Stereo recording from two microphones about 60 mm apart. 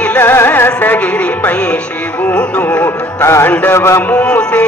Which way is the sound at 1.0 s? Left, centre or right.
Left.